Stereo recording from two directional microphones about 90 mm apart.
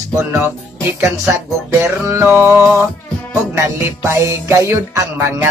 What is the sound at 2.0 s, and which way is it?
Music, 30° right (ahead or behind).